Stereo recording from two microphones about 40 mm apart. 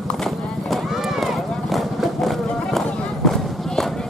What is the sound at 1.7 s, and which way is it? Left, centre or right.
Vehicle, centre.